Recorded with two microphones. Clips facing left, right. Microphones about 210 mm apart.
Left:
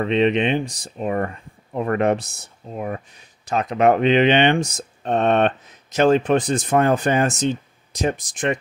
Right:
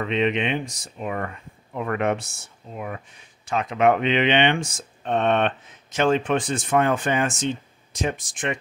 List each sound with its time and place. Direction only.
0.0 s speech: 35° left (ahead or behind)